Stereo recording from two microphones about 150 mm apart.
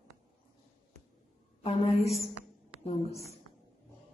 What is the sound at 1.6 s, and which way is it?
A woman's voice, 40° left (ahead or behind).